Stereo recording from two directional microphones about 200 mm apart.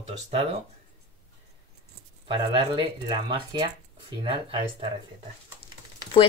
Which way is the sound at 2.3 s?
25° right (ahead or behind).